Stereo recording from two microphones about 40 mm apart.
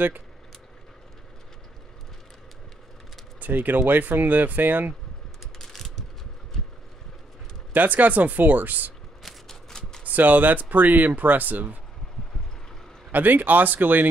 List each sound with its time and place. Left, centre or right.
3.3 s speech: right
5.6 s a sound: centre
7.7 s speech: right
9.2 s a sound: centre
10.0 s speech: right
13.1 s speech: right